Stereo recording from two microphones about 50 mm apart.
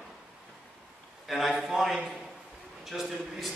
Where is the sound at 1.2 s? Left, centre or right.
Centre.